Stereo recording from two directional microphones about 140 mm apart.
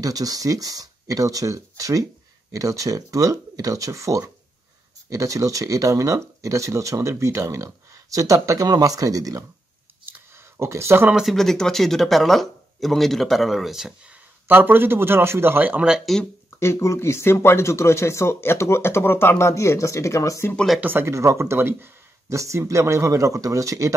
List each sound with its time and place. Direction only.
0.0 s speech: 25° right (ahead or behind)
10.0 s a sound: 20° right (ahead or behind)
11.1 s speech: centre (ahead or behind)
14.5 s speech: 15° right (ahead or behind)
16.5 s speech: 20° left (ahead or behind)
20.5 s speech: centre (ahead or behind)
20.8 s speech: 15° right (ahead or behind)